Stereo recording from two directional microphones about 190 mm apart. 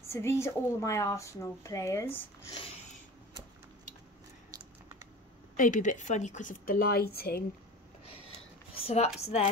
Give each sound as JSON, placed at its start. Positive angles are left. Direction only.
{"t": 0.1, "sound": "a woman's voice", "side_deg": 15}
{"t": 5.6, "sound": "a woman's voice", "side_deg": 40}
{"t": 8.7, "sound": "speech", "side_deg": 30}